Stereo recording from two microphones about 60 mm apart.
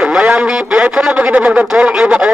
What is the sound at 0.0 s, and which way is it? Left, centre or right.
A man's voice, centre.